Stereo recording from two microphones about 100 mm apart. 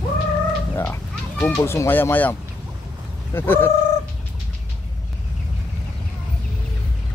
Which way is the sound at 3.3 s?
20° left (ahead or behind).